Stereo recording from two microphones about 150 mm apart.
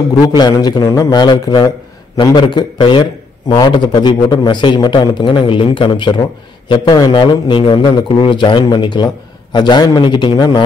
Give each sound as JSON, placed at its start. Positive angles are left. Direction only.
{"t": 0.4, "sound": "a man's voice", "side_deg": 25}